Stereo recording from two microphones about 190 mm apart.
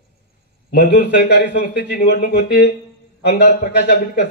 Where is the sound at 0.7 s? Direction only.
60° left (ahead or behind).